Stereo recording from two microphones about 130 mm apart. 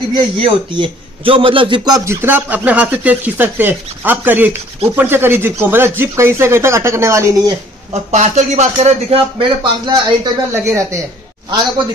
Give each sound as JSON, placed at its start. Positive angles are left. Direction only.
{"t": 0.4, "sound": "a man's voice", "side_deg": -45}
{"t": 2.0, "sound": "speech", "side_deg": -15}
{"t": 7.9, "sound": "speech", "side_deg": -60}
{"t": 9.4, "sound": "speech", "side_deg": -35}
{"t": 10.5, "sound": "speech", "side_deg": -20}